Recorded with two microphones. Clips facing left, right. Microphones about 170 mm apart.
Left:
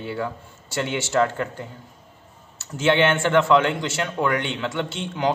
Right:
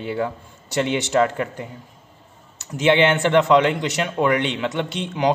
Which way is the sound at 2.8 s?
20° right (ahead or behind).